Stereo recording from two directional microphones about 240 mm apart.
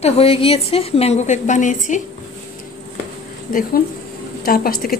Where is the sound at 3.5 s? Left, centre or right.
Left.